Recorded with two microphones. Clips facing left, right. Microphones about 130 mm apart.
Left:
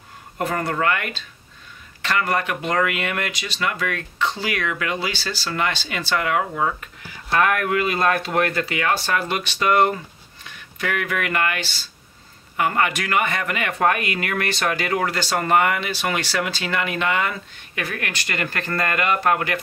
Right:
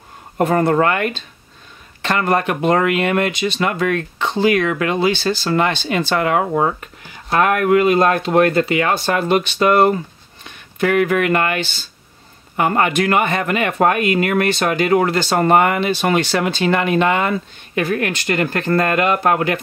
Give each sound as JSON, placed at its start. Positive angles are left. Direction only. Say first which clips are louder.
{"t": 0.6, "sound": "speech", "louder": "right 7 dB", "side_deg": -35}